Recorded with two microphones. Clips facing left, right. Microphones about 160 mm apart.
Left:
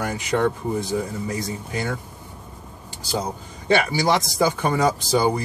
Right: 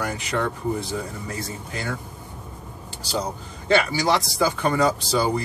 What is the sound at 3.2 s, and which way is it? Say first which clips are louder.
Speech: even; 15° left (ahead or behind).